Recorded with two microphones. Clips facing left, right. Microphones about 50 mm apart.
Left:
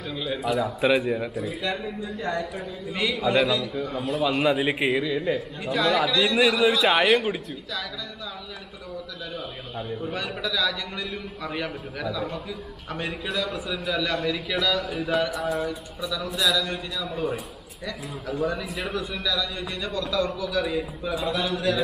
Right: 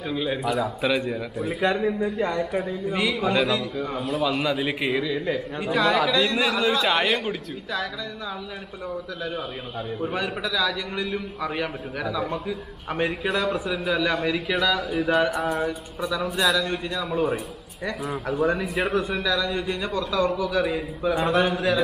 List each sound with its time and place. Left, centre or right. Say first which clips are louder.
0.1 s a man's voice: right 4 dB; centre
0.4 s a man's voice: left 1 dB; centre
1.6 s a man's voice: right 7 dB; right
2.1 s a man's voice: right 3 dB; right
2.9 s a man's voice: left 1 dB; centre
10.0 s a man's voice: right 4 dB; centre
16.0 s speech: right 5 dB; right
16.3 s a man's voice: right 2 dB; centre
18.2 s a man's voice: right 3 dB; centre
19.2 s speech: right 4 dB; right
21.3 s a man's voice: right 5 dB; right